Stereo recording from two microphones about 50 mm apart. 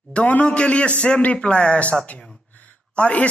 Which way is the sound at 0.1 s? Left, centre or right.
Left.